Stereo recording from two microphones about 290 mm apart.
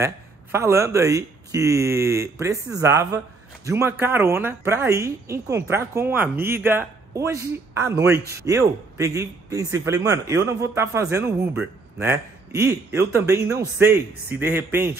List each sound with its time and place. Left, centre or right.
0.0 s a man's voice: centre